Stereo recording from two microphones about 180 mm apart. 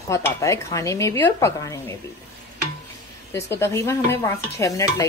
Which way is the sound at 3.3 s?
15° left (ahead or behind).